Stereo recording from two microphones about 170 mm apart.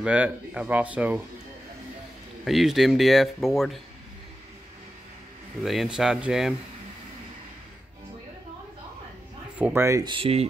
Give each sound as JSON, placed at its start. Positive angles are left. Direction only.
{"t": 0.0, "sound": "speech", "side_deg": -5}
{"t": 2.4, "sound": "speech", "side_deg": 0}
{"t": 5.6, "sound": "speech", "side_deg": 0}
{"t": 9.6, "sound": "speech", "side_deg": -15}
{"t": 10.1, "sound": "speech", "side_deg": -35}